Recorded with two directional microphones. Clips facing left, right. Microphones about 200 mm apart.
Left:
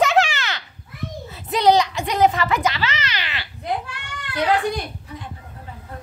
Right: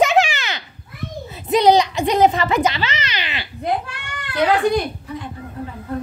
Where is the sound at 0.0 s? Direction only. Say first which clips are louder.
Right 2 dB; 15° right (ahead or behind).